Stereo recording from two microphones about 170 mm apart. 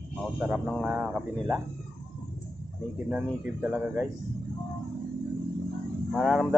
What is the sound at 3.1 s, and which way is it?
Speech, 10° right (ahead or behind).